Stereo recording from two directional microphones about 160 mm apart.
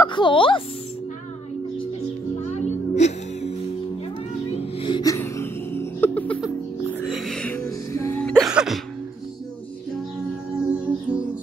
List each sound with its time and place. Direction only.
0.0 s speech: 30° left (ahead or behind)
2.5 s music: 45° left (ahead or behind)
4.6 s music: 35° left (ahead or behind); by 7.6 s 5° left (ahead or behind)
7.9 s music: 15° left (ahead or behind)
8.2 s music: 5° left (ahead or behind)
10.5 s music: 5° right (ahead or behind)